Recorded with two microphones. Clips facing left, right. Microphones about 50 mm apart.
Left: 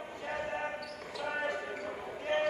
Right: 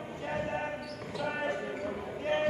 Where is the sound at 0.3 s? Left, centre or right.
Centre.